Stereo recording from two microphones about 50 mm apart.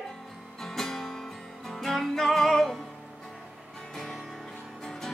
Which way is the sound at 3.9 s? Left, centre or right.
Centre.